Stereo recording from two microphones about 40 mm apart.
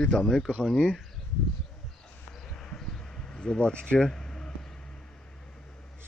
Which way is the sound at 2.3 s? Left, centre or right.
Centre.